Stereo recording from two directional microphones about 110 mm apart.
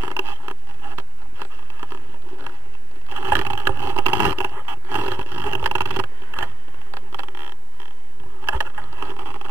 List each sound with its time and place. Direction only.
0.0 s patter: 20° right (ahead or behind)
3.1 s scrape: 20° right (ahead or behind)
7.2 s a sound: 20° right (ahead or behind)
8.5 s vehicle: 25° right (ahead or behind)